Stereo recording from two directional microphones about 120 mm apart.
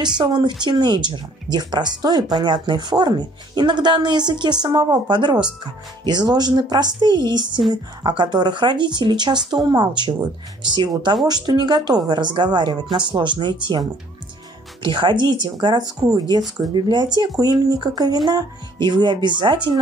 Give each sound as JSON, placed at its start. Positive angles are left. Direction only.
{"t": 0.0, "sound": "speech", "side_deg": -40}